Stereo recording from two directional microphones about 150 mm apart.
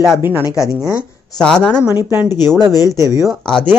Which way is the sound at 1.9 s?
15° right (ahead or behind).